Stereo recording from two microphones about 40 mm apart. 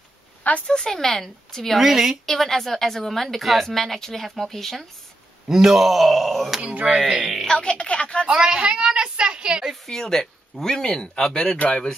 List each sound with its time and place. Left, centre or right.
0.4 s a sound: left
0.7 s speech: centre
1.8 s speech: centre
2.2 s a woman's voice: centre
5.5 s a woman's voice: centre
6.7 s speech: right
7.0 s speech: centre
7.4 s speech: left
8.3 s a woman's voice: right
9.8 s a man's voice: centre